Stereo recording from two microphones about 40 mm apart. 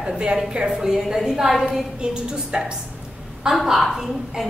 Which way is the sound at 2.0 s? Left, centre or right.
Right.